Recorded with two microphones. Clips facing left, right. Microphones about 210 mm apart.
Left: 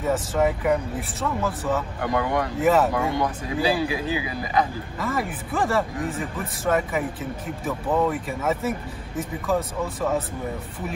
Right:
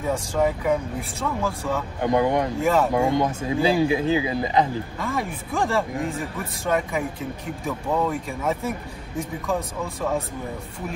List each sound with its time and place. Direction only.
0.0 s speech: 5° left (ahead or behind)
2.0 s speech: 20° right (ahead or behind)
2.6 s speech: 5° left (ahead or behind)
2.9 s speech: 20° right (ahead or behind)
4.9 s speech: 5° left (ahead or behind)